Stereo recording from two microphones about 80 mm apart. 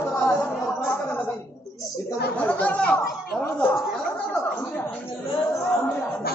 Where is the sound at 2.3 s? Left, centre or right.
Centre.